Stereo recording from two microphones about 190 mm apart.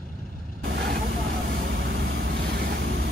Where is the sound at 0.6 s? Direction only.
85° right.